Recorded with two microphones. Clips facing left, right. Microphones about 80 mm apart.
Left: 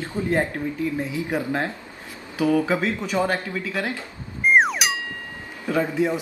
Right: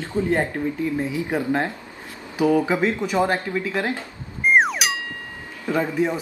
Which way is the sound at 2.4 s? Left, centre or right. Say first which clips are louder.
Right 2 dB; centre.